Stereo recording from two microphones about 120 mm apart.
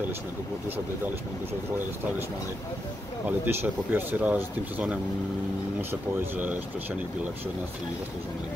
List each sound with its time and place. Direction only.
3.3 s speech: 15° right (ahead or behind)